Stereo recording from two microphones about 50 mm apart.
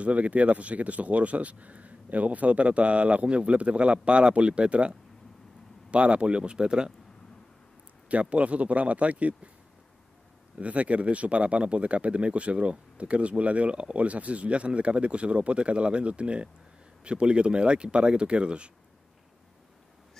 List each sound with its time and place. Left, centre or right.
0.0 s speech: right
8.1 s speech: right
10.6 s speech: right